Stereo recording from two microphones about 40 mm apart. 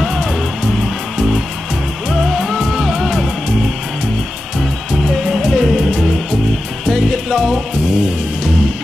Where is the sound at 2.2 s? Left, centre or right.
Centre.